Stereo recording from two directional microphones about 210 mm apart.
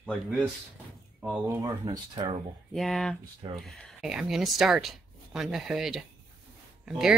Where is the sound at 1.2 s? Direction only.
10° right (ahead or behind).